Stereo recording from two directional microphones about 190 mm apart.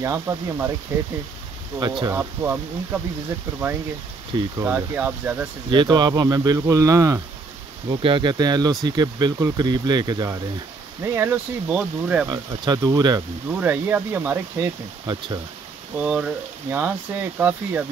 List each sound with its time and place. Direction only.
0.0 s speech: 15° right (ahead or behind)
4.6 s speech: 10° right (ahead or behind)
5.7 s speech: 20° right (ahead or behind); by 12.3 s 5° right (ahead or behind)
12.3 s speech: 20° right (ahead or behind)
13.5 s speech: 10° right (ahead or behind)
16.0 s speech: 5° right (ahead or behind)